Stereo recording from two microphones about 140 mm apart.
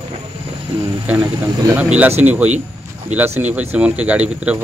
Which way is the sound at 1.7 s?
10° right (ahead or behind).